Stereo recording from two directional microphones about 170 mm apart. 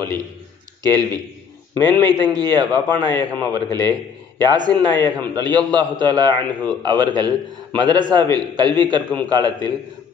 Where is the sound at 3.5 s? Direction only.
25° right (ahead or behind).